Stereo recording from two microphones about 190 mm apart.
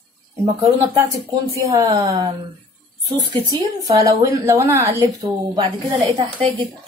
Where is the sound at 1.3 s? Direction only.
15° right (ahead or behind).